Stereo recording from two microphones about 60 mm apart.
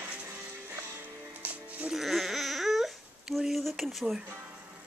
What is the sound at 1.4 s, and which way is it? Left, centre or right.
Music, right.